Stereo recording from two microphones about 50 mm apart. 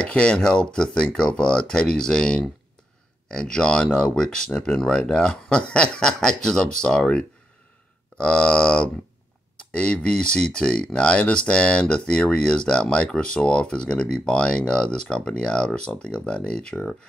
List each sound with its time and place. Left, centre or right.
0.0 s speech: left